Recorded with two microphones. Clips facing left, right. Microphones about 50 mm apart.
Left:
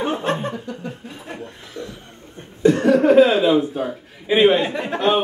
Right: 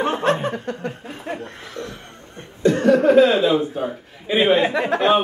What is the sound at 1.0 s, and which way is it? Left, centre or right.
Chuckle, right.